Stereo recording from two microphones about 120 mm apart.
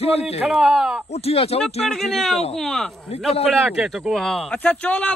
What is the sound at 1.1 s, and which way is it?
Speech, 55° left (ahead or behind).